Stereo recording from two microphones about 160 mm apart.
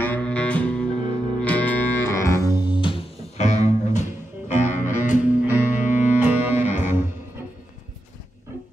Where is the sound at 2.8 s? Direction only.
35° left (ahead or behind).